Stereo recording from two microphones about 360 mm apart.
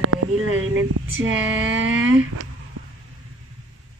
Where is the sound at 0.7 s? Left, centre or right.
Right.